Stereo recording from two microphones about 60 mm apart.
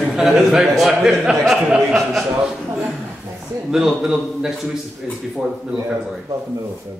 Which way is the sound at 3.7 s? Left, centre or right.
Centre.